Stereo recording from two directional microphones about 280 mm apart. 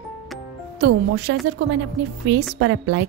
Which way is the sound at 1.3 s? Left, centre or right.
Right.